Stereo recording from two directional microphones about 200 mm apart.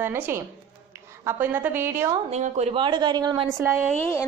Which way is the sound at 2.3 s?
35° right (ahead or behind).